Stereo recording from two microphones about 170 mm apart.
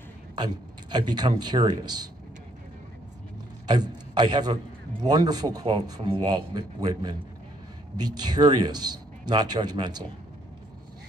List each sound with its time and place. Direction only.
0.4 s a man's voice: 25° right (ahead or behind)
3.6 s a man's voice: 25° right (ahead or behind)